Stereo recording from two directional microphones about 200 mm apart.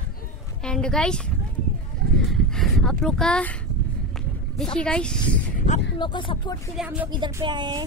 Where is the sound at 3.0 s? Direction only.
5° left (ahead or behind).